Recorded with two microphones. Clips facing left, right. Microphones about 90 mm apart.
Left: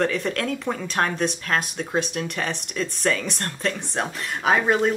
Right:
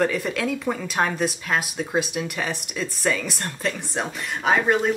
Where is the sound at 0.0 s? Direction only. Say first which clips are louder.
Right 1 dB; 5° right (ahead or behind).